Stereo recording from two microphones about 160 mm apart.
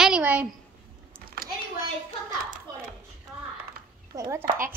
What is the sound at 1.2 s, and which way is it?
Typing, 65° right (ahead or behind).